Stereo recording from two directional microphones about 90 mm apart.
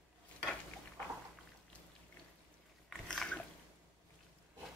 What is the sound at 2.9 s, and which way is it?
Dog, 5° left (ahead or behind).